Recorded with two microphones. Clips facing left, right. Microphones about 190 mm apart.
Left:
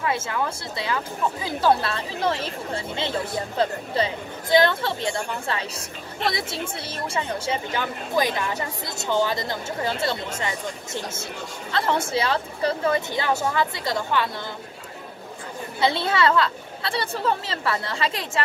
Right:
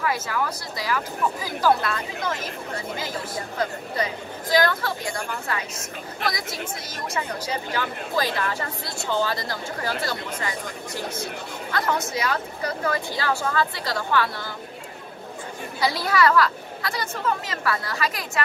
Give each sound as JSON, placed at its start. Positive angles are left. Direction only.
{"t": 0.0, "sound": "speech", "side_deg": 25}
{"t": 15.8, "sound": "speech", "side_deg": 25}